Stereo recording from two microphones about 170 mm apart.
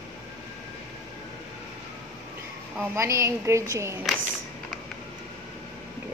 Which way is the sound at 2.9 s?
15° right (ahead or behind).